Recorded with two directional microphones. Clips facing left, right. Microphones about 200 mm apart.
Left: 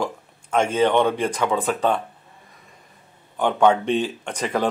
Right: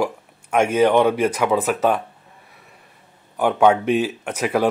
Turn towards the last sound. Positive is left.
turn(degrees=-10)  # may be behind; listen again after turning